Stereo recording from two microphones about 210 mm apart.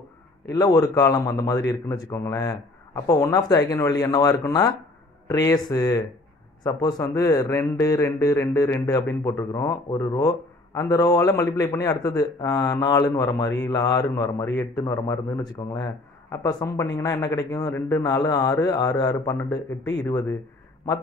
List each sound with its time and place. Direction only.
0.5 s speech: 20° left (ahead or behind)